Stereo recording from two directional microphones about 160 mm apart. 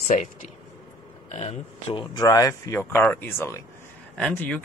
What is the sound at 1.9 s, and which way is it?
Speech, 25° left (ahead or behind).